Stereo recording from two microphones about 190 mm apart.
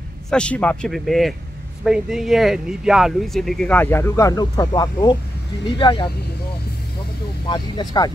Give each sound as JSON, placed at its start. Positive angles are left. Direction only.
{"t": 0.3, "sound": "speech", "side_deg": 5}
{"t": 7.4, "sound": "speech", "side_deg": 25}